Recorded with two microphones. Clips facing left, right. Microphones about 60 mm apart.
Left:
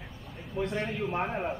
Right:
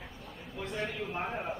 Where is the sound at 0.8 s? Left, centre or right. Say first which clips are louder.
Left 1 dB; left.